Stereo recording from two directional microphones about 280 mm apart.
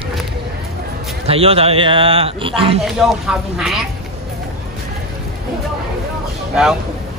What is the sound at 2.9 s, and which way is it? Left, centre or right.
Speech, centre.